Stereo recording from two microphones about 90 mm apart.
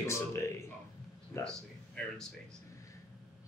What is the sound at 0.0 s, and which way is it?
Speech, 35° left (ahead or behind).